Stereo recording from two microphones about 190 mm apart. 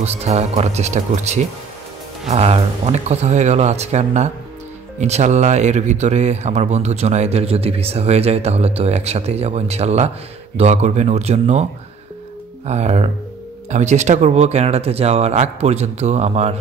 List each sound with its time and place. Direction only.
0.0 s speech: 35° right (ahead or behind)
12.6 s speech: 35° right (ahead or behind)